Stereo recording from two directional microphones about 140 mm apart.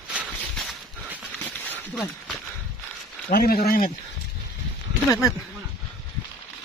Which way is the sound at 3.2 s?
90° left.